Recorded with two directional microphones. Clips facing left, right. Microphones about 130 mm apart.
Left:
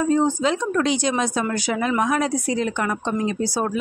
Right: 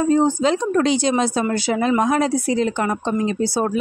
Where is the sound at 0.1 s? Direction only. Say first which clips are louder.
Right 4 dB; 35° right (ahead or behind).